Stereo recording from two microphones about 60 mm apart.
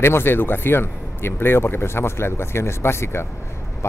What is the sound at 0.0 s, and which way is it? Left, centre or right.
Speech, left.